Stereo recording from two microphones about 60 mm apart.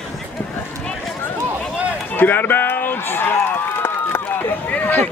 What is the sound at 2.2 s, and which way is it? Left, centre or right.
Run, left.